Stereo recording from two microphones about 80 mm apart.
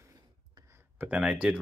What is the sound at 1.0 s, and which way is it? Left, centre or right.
Speech, centre.